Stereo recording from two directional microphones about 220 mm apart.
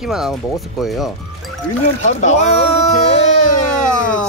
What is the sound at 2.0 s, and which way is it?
Speech, 30° left (ahead or behind).